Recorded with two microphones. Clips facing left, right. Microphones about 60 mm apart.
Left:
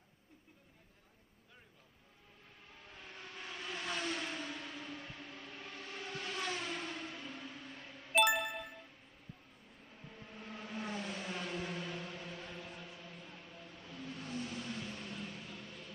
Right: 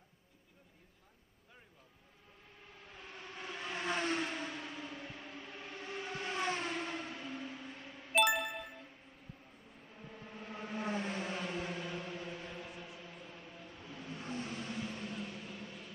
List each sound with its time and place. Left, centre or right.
3.0 s vehicle: centre
3.5 s vehicle: right
6.7 s a sound: right
7.2 s music: centre
8.1 s ding: centre
10.1 s vehicle: centre
11.3 s vehicle: centre
14.8 s music: centre